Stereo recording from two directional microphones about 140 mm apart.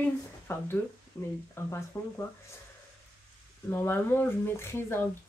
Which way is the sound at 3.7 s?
15° left (ahead or behind).